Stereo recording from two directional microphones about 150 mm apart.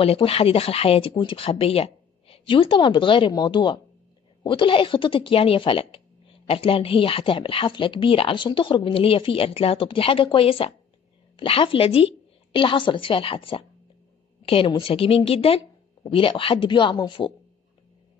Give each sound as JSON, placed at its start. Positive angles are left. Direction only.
{"t": 0.0, "sound": "speech", "side_deg": 40}